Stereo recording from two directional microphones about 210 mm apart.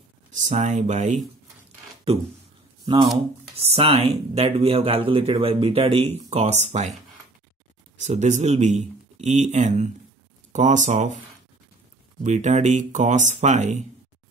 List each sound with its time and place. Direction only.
0.3 s speech: 35° right (ahead or behind)
2.8 s speech: 20° right (ahead or behind)
8.0 s speech: 35° right (ahead or behind)